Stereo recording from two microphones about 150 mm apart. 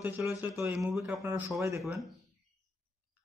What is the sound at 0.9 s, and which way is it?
Speech, 5° right (ahead or behind).